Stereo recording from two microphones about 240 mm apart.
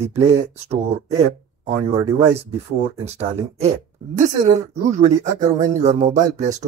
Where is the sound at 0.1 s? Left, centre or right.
Right.